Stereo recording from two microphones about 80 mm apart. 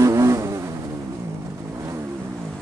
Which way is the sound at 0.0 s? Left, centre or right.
Right.